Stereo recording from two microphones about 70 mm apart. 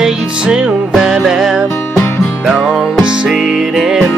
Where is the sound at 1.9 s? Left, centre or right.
Left.